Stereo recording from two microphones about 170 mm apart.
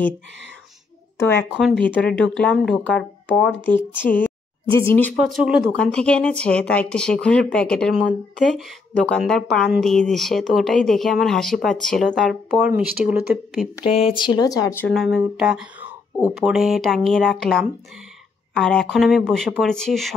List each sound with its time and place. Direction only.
1.1 s speech: 15° left (ahead or behind)
5.1 s speech: 5° right (ahead or behind)
12.5 s speech: 10° right (ahead or behind)
13.8 s speech: 35° left (ahead or behind); by 14.9 s 15° left (ahead or behind)
14.9 s speech: centre (ahead or behind)